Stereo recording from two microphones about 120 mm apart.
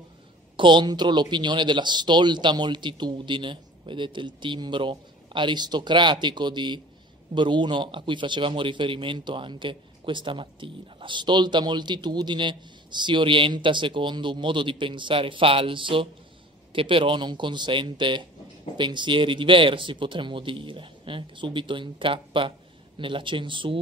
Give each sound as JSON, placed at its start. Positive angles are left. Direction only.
{"t": 0.6, "sound": "a man's voice", "side_deg": -40}